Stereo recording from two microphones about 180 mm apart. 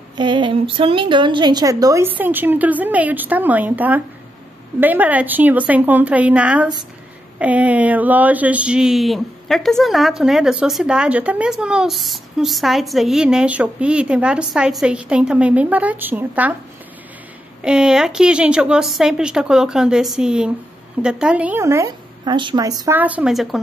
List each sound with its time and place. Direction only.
0.2 s a woman's voice: 25° right (ahead or behind); by 16.5 s 10° right (ahead or behind)
17.6 s speech: 5° right (ahead or behind)